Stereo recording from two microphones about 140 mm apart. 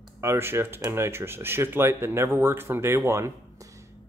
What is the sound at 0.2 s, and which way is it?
A man's voice, 20° right (ahead or behind).